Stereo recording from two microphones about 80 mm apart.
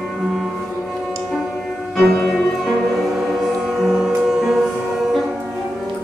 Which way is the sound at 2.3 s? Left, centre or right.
Centre.